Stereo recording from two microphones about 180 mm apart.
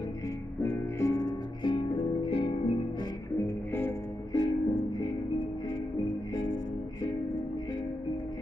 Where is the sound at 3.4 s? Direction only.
15° left (ahead or behind).